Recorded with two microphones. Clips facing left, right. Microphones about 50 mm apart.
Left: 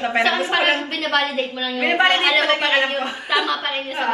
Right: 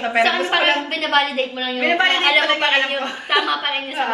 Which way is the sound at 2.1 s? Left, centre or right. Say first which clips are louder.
Right 1 dB; right.